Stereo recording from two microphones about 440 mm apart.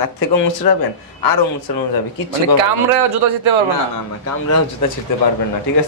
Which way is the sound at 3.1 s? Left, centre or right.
Right.